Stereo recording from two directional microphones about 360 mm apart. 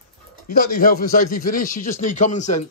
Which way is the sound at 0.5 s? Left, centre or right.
Left.